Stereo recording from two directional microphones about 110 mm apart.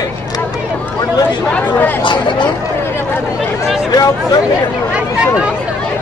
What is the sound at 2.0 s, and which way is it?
Speech, 45° left (ahead or behind).